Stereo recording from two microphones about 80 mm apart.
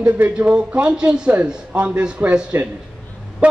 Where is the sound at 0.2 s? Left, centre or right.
Centre.